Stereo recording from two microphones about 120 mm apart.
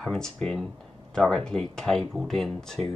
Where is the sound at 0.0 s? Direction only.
5° left (ahead or behind).